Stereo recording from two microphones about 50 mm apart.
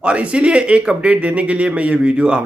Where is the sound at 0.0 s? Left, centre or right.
Right.